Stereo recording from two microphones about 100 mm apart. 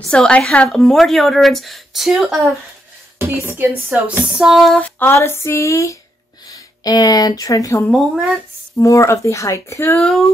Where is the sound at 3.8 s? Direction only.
5° right (ahead or behind).